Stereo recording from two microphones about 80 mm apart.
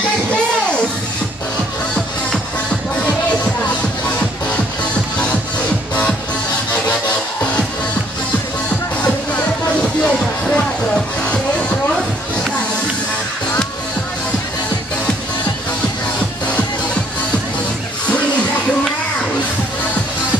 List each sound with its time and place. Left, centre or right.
9.0 s music: centre